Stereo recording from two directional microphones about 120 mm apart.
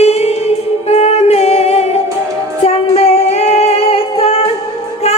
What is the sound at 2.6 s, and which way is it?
Female singing, 60° left (ahead or behind).